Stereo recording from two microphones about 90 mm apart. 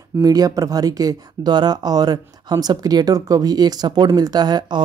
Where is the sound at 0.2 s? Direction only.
45° right (ahead or behind).